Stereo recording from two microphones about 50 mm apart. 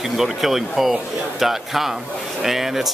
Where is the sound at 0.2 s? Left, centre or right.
Centre.